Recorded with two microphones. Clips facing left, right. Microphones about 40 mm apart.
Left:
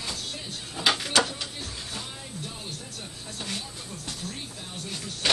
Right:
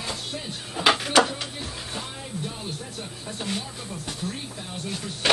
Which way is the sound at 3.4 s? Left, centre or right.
Centre.